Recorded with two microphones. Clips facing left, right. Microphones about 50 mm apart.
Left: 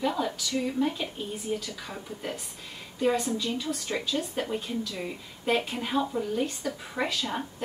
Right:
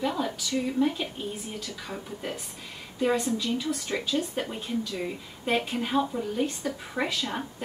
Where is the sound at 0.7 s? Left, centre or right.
Centre.